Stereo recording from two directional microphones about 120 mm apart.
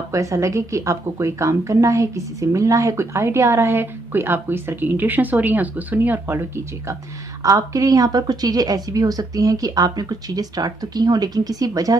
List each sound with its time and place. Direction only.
0.1 s a woman's voice: 25° right (ahead or behind)